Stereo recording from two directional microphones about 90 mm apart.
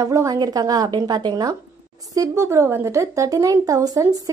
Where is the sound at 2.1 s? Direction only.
35° right (ahead or behind).